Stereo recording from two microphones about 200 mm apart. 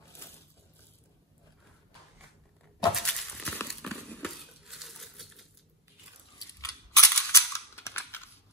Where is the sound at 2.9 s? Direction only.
Centre (ahead or behind).